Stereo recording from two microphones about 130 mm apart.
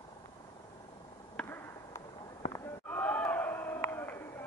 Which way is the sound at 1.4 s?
15° left (ahead or behind).